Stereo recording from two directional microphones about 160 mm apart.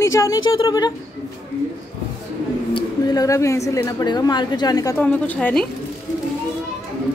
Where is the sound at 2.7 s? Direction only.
25° left (ahead or behind).